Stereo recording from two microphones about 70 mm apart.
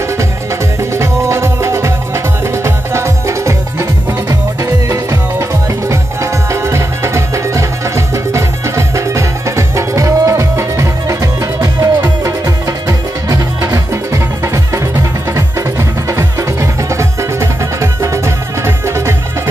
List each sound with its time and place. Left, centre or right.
0.9 s music: right
6.5 s music: right
11.6 s music: right
18.0 s music: right